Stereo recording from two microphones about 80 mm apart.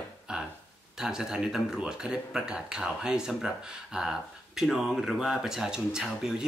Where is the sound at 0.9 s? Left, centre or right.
Centre.